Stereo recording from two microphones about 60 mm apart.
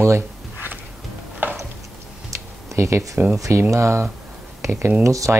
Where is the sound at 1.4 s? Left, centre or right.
Right.